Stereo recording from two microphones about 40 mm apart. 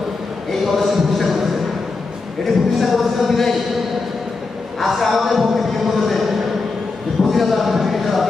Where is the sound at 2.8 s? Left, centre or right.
Centre.